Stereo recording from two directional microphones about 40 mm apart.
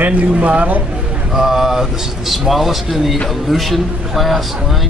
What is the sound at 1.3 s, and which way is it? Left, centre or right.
A man's voice, centre.